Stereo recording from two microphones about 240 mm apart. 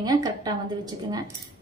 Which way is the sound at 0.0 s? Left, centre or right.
Centre.